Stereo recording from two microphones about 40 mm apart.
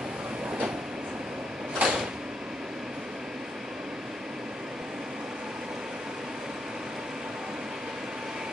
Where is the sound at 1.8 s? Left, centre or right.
Right.